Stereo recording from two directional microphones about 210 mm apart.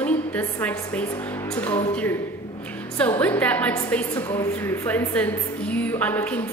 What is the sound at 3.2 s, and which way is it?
Speech, 5° left (ahead or behind).